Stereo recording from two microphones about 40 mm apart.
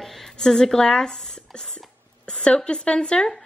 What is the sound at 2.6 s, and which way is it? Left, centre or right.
Speech, left.